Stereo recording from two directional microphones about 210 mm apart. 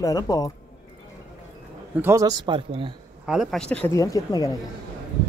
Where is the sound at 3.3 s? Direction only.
Centre (ahead or behind); by 4.5 s 15° left (ahead or behind).